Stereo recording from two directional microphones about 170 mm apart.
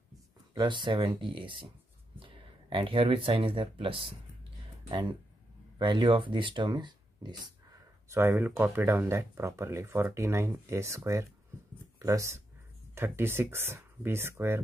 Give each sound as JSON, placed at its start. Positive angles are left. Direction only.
{"t": 0.6, "sound": "speech", "side_deg": -30}
{"t": 5.8, "sound": "speech", "side_deg": -25}
{"t": 8.1, "sound": "speech", "side_deg": -15}